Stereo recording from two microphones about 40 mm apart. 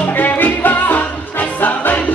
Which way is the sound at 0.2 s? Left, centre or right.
Left.